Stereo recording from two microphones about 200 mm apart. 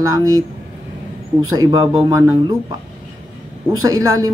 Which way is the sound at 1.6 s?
20° right (ahead or behind).